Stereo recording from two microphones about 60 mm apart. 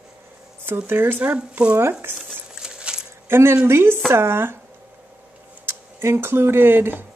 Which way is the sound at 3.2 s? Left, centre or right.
Right.